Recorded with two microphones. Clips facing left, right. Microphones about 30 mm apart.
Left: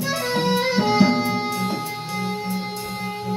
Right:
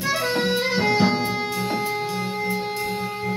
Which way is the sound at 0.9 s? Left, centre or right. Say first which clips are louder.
Left 2 dB; centre.